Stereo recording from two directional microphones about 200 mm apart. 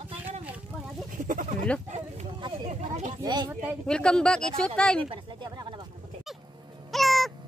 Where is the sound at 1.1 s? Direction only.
40° right (ahead or behind).